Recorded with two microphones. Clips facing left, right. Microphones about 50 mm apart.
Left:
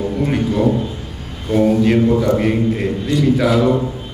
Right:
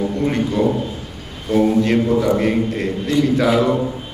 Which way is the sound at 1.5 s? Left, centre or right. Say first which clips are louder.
Left 1 dB; centre.